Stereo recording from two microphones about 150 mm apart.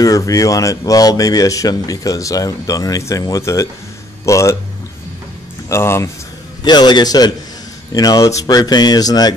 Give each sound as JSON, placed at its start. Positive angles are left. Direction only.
{"t": 0.0, "sound": "speech", "side_deg": 25}
{"t": 5.7, "sound": "speech", "side_deg": 15}
{"t": 6.6, "sound": "speech", "side_deg": 30}